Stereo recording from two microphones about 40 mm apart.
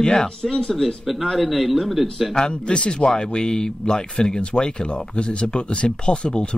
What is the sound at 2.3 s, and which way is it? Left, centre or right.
Speech, left.